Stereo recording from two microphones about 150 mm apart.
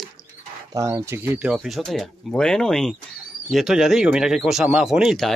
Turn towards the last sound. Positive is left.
turn(degrees=0)  # may be behind; listen again after turning